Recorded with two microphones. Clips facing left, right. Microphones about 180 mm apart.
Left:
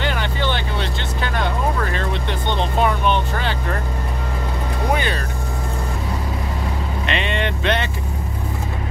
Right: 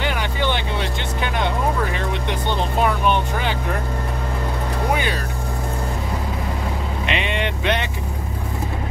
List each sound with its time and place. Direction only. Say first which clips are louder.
0.0 s vehicle: even; 10° right (ahead or behind)
2.5 s vehicle: left 1 dB; 5° right (ahead or behind)
4.9 s vehicle: left 3 dB; 10° right (ahead or behind)
7.1 s vehicle: left 1 dB; 15° right (ahead or behind)